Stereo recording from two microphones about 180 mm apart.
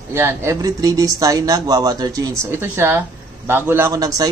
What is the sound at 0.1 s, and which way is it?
Speech, 15° right (ahead or behind).